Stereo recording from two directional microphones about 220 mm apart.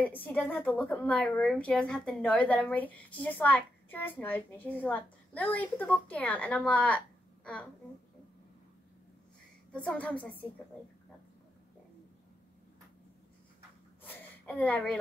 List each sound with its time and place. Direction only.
0.0 s a woman's voice: 5° left (ahead or behind)
9.7 s a woman's voice: 5° left (ahead or behind)
14.0 s a sound: 5° left (ahead or behind)